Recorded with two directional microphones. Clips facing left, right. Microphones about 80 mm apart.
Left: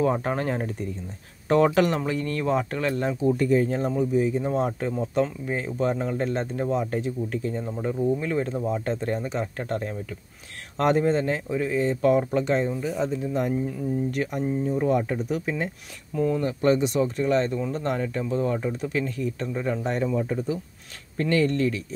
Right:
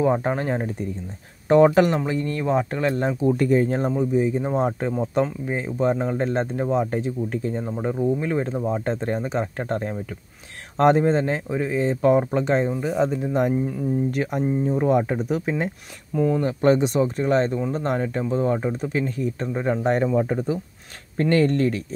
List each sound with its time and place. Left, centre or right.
0.0 s speech: centre
3.3 s speech: right
12.8 s speech: right